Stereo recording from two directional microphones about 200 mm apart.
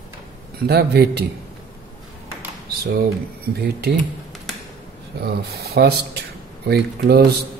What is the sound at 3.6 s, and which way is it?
Speech, 55° right (ahead or behind).